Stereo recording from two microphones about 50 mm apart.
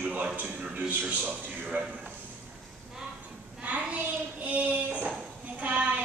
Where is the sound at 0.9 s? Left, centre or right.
Right.